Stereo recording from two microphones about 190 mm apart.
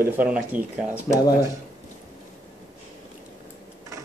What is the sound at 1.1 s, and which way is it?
Speech, 20° left (ahead or behind).